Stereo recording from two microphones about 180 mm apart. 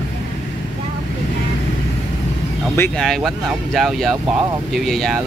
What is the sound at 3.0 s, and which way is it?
Speech, centre (ahead or behind).